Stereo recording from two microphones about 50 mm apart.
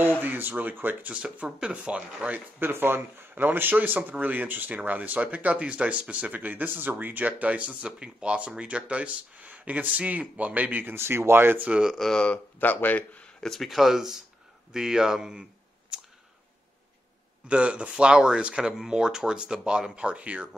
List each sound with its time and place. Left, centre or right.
0.2 s speech: right
1.1 s speech: right
2.6 s speech: right
11.0 s speech: right
12.0 s speech: centre
12.5 s speech: left
13.4 s speech: centre
13.7 s speech: centre
15.9 s camera: centre
17.5 s speech: right